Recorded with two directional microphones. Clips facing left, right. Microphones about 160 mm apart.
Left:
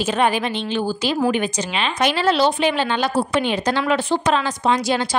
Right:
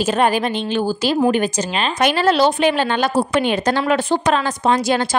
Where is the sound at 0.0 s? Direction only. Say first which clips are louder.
Right 2 dB; 45° right (ahead or behind).